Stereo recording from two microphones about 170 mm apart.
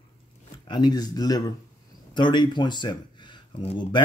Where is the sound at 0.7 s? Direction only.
25° left (ahead or behind).